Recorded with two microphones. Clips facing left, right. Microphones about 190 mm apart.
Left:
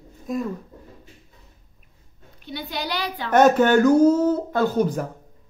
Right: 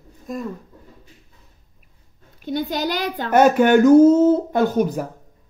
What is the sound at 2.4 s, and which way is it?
Speech, 45° right (ahead or behind).